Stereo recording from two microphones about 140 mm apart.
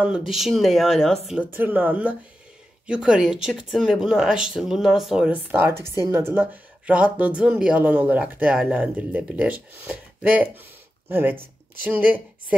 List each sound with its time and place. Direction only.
0.3 s speech: centre (ahead or behind)
1.5 s speech: 15° right (ahead or behind)